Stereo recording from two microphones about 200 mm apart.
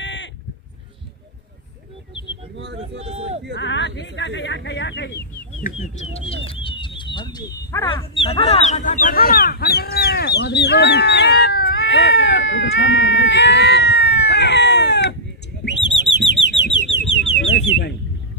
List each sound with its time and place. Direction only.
0.0 s sheep: 65° left (ahead or behind)
2.5 s a sound: 65° right (ahead or behind)
3.0 s a sound: 35° right (ahead or behind)
3.5 s speech: 65° left (ahead or behind)
6.5 s speech: 25° left (ahead or behind); by 15.1 s 55° left (ahead or behind)
15.6 s bird: 60° left (ahead or behind)
17.4 s speech: 55° left (ahead or behind)